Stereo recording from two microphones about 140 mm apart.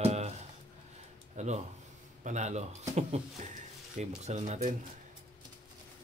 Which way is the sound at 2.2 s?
55° right (ahead or behind).